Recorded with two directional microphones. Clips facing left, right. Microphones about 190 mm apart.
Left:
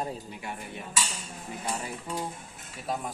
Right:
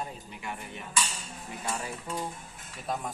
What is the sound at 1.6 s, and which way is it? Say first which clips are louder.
Cutlery: even; 15° left (ahead or behind).